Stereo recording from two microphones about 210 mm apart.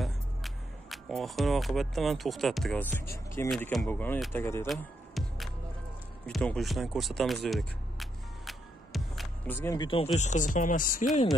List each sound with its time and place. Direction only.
0.0 s speech: centre (ahead or behind)
3.4 s speech: centre (ahead or behind)
4.6 s music: centre (ahead or behind)
9.6 s speech: 20° left (ahead or behind); by 11.1 s 40° left (ahead or behind)